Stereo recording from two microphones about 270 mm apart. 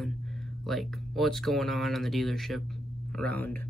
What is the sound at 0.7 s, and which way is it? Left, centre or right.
Speech, centre.